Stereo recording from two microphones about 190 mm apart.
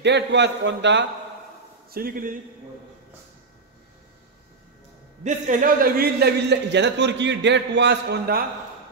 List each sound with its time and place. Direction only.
0.0 s a man's voice: 65° right (ahead or behind)
1.9 s a man's voice: 50° right (ahead or behind)
5.2 s a man's voice: 40° right (ahead or behind); by 8.5 s 55° right (ahead or behind)